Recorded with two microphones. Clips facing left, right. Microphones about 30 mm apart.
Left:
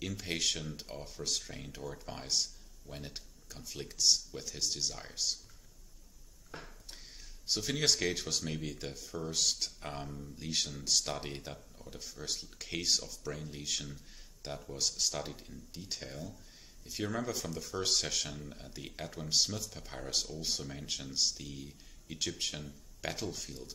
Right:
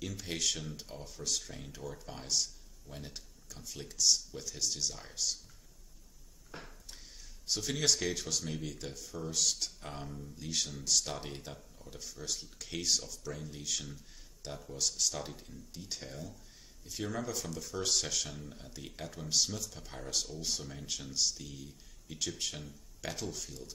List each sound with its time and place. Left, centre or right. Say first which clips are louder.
0.0 s speech: left 1 dB; centre
6.5 s a sound: even; centre
7.4 s speech: left 1 dB; centre